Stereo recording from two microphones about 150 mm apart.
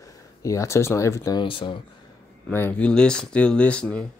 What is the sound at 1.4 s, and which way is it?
Speech, 35° left (ahead or behind).